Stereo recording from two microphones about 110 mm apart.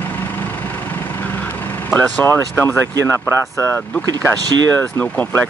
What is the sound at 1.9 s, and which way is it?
Speech, 20° left (ahead or behind).